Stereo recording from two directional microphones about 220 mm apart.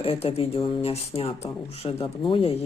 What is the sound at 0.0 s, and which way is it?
Speech, 25° left (ahead or behind).